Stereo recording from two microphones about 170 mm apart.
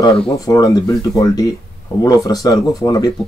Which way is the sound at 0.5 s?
20° left (ahead or behind).